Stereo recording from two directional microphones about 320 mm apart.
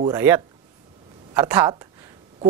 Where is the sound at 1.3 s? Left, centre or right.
Centre.